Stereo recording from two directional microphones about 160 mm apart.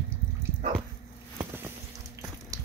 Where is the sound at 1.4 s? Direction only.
15° right (ahead or behind).